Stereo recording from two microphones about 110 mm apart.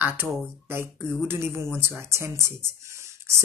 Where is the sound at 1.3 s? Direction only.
20° right (ahead or behind).